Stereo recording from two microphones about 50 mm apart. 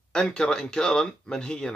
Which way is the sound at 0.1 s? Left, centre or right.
Centre.